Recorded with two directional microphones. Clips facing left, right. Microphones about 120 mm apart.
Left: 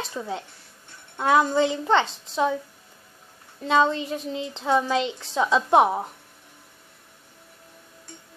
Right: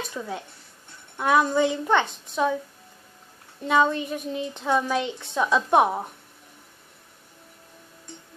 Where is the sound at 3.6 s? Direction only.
20° left (ahead or behind).